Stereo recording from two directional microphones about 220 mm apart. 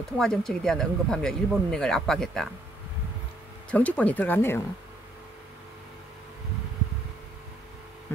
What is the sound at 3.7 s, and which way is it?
Speech, 5° left (ahead or behind).